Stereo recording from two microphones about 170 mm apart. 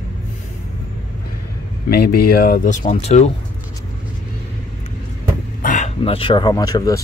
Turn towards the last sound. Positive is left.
turn(degrees=20)  # may be behind; listen again after turning